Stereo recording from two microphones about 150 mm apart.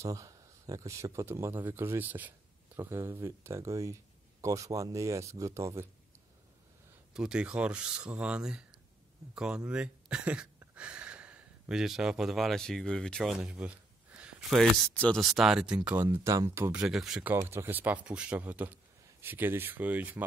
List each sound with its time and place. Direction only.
0.0 s speech: 20° right (ahead or behind)
7.2 s speech: 5° right (ahead or behind)
16.8 s speech: centre (ahead or behind)
17.3 s speech: 15° right (ahead or behind)